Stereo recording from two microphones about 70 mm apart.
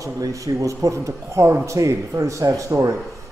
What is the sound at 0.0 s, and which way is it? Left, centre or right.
Speech, right.